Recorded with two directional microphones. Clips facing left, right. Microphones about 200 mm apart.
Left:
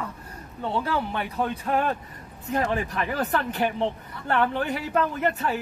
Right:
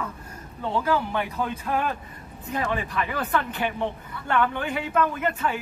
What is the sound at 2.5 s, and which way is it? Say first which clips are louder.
A man's voice: left 2 dB; 45° left (ahead or behind).